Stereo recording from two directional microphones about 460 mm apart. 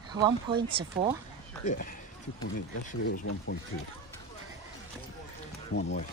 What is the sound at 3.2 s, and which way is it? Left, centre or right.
Speech, left.